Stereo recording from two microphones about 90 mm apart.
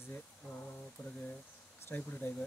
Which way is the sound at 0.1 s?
15° left (ahead or behind).